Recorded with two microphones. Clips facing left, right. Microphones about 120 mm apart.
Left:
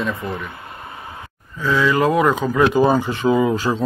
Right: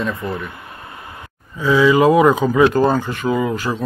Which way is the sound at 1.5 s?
10° right (ahead or behind).